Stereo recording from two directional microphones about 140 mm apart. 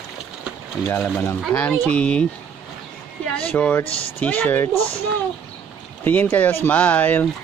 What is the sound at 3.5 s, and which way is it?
Speech, 10° left (ahead or behind).